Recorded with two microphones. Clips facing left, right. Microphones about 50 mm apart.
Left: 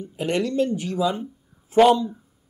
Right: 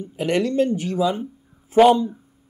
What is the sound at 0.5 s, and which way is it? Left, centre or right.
Speech, right.